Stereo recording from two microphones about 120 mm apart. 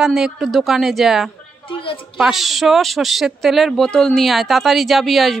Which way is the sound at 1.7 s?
45° left (ahead or behind).